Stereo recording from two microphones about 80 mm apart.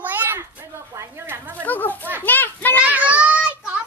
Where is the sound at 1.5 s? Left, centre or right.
Left.